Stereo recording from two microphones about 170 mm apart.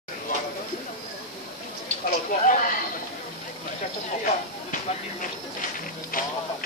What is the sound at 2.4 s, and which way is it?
Chatter, 50° left (ahead or behind).